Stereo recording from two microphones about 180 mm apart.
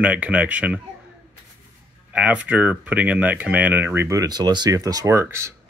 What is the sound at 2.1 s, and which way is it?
Speech, 5° right (ahead or behind).